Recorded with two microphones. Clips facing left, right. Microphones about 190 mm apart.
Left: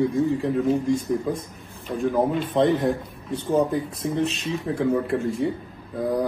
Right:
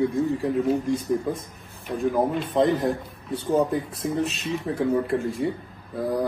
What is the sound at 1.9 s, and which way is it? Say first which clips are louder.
A man's voice: left 1 dB; centre (ahead or behind).